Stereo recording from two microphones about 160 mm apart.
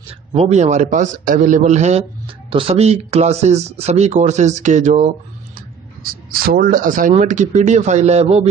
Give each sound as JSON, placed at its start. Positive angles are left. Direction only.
{"t": 0.3, "sound": "speech", "side_deg": -40}
{"t": 6.3, "sound": "speech", "side_deg": -65}